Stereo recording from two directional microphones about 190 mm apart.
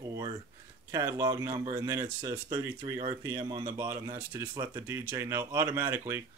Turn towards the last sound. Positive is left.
turn(degrees=-15)  # may be behind; listen again after turning